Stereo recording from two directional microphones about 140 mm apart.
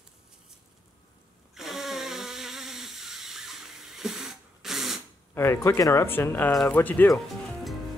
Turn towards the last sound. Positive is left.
turn(degrees=0)  # may be behind; listen again after turning